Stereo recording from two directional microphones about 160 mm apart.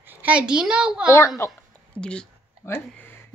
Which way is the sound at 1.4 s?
15° left (ahead or behind).